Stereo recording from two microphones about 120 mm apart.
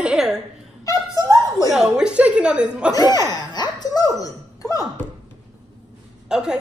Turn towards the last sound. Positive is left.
turn(degrees=-5)  # may be behind; listen again after turning